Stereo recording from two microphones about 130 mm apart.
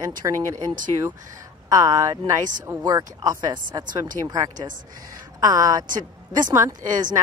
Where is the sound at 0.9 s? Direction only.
40° right (ahead or behind).